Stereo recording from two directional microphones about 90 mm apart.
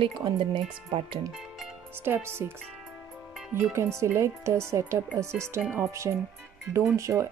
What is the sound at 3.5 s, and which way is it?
Speech, 30° right (ahead or behind).